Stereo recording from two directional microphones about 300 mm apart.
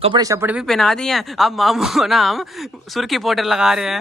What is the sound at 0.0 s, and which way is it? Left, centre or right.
Speech, centre.